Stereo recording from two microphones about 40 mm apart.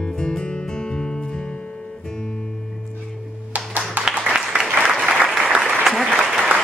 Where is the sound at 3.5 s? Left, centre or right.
Right.